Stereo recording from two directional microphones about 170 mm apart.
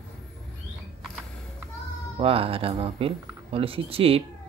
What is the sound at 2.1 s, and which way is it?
Speech, 35° right (ahead or behind).